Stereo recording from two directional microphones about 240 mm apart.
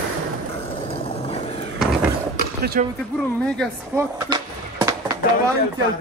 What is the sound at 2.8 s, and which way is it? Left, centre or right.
Speech, right.